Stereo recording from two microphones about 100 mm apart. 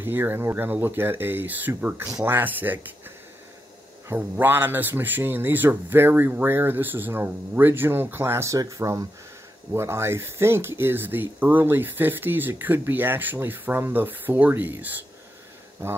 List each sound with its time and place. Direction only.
0.0 s speech: 20° right (ahead or behind)
4.1 s speech: 20° right (ahead or behind)